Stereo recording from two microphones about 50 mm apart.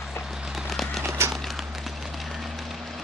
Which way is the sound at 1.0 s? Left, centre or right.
Right.